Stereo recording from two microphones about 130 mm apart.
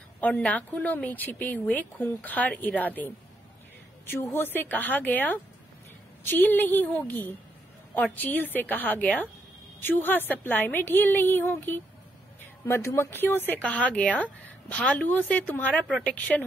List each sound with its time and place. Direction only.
0.2 s a woman's voice: 10° left (ahead or behind)